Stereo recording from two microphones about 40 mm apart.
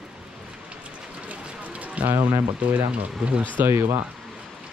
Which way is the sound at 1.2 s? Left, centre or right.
Right.